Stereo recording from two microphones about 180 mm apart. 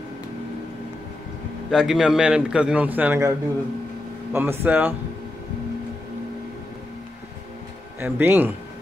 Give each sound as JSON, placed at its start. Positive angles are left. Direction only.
{"t": 1.7, "sound": "a man's voice", "side_deg": -5}
{"t": 8.0, "sound": "a man's voice", "side_deg": -10}